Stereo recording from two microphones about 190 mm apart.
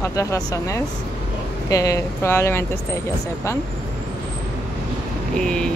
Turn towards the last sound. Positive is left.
turn(degrees=5)  # may be behind; listen again after turning